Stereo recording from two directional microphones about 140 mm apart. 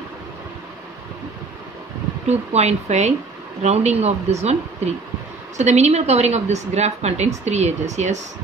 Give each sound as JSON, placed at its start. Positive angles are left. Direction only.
{"t": 2.2, "sound": "a woman's voice", "side_deg": -50}
{"t": 5.6, "sound": "a woman's voice", "side_deg": -55}